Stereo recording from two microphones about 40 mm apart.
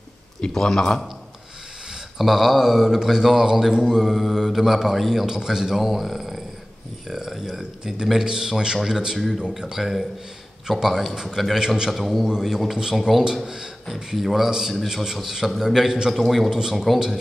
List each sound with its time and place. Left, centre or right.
0.6 s a man's voice: centre
2.1 s a man's voice: centre
7.2 s a sound: centre
7.8 s a man's voice: centre
11.6 s a man's voice: centre
11.9 s a man's voice: centre
16.4 s a man's voice: centre
16.7 s a man's voice: centre